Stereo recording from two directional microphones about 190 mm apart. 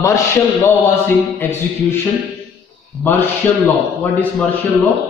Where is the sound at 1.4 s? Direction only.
15° left (ahead or behind).